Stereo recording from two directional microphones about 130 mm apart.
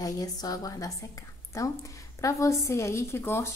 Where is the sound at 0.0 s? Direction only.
30° left (ahead or behind).